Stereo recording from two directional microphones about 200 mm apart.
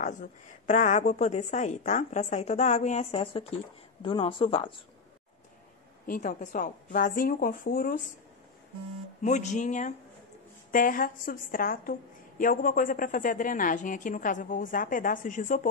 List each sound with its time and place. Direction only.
0.0 s a woman's voice: 40° left (ahead or behind)
6.0 s speech: 40° left (ahead or behind)
9.2 s a woman's voice: 35° left (ahead or behind)